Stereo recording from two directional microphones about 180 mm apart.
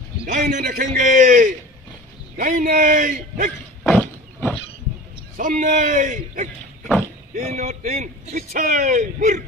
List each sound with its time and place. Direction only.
0.3 s a man's voice: 45° right (ahead or behind)
3.8 s wild animals: 5° left (ahead or behind)
5.4 s a man's voice: 45° right (ahead or behind)